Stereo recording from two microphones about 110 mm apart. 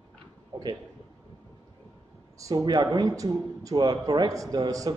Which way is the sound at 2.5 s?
40° right (ahead or behind).